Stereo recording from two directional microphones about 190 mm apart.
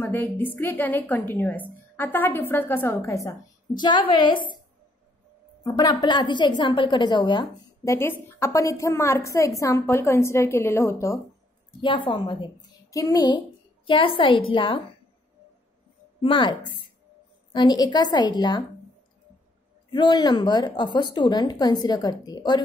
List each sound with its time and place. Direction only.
0.0 s a woman's voice: 10° left (ahead or behind)
5.6 s a woman's voice: 20° left (ahead or behind)
11.8 s a woman's voice: 25° left (ahead or behind)
16.2 s a woman's voice: 25° left (ahead or behind)
19.9 s a woman's voice: 25° left (ahead or behind)